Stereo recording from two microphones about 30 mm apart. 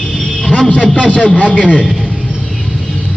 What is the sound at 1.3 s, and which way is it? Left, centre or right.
Speech, left.